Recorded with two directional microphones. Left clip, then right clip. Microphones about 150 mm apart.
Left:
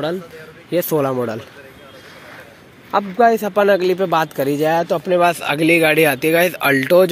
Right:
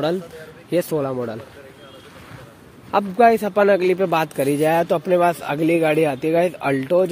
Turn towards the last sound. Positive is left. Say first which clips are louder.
# left 5 dB
turn(degrees=5)  # may be behind; listen again after turning